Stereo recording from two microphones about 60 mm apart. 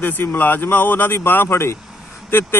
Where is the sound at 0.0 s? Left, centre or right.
Left.